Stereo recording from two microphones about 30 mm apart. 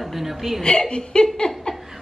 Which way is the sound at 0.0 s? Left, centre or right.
Centre.